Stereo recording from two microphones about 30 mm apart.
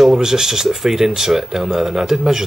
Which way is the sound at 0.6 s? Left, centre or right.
Centre.